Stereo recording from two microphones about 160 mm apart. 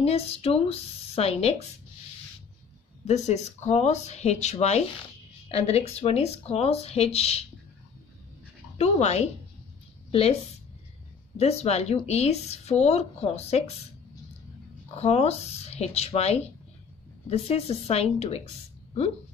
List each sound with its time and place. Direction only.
0.0 s speech: 40° left (ahead or behind)
3.1 s speech: 45° left (ahead or behind)
8.7 s speech: 45° left (ahead or behind)
11.3 s speech: 40° left (ahead or behind)
15.0 s speech: 40° left (ahead or behind)